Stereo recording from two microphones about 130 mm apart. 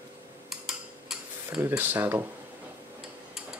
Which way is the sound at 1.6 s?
15° right (ahead or behind).